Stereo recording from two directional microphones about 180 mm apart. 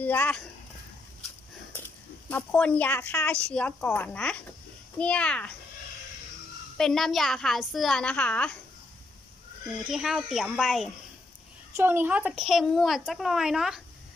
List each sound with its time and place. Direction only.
0.0 s a woman's voice: 10° left (ahead or behind)
2.2 s a woman's voice: 5° left (ahead or behind)
6.8 s a woman's voice: centre (ahead or behind)
9.8 s a woman's voice: centre (ahead or behind)
11.7 s a woman's voice: 10° right (ahead or behind)